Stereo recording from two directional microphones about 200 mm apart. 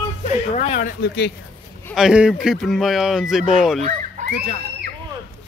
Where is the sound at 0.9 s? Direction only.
55° left (ahead or behind).